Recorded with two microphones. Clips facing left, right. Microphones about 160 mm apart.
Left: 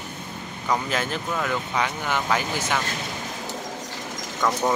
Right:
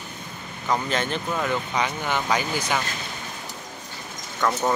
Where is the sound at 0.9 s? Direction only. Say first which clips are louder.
Right 1 dB; 5° left (ahead or behind).